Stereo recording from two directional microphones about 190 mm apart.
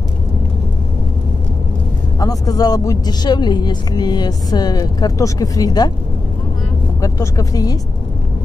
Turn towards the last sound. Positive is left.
turn(degrees=20)  # may be behind; listen again after turning